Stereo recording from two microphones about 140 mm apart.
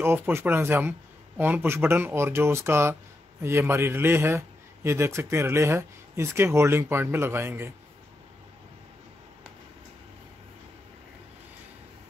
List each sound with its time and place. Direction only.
0.0 s a man's voice: 15° right (ahead or behind)